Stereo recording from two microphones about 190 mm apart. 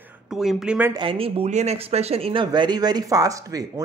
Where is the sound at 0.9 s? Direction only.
25° right (ahead or behind).